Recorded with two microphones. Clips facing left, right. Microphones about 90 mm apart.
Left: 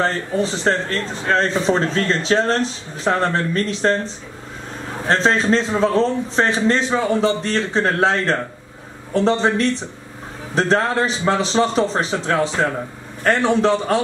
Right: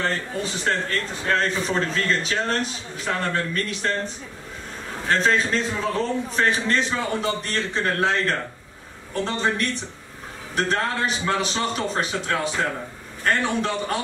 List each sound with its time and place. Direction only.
0.0 s a man's voice: 30° left (ahead or behind)